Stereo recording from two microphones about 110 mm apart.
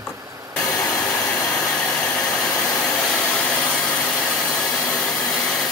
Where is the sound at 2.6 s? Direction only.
35° left (ahead or behind).